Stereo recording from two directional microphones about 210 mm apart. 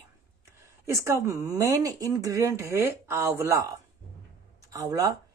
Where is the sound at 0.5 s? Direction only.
15° right (ahead or behind).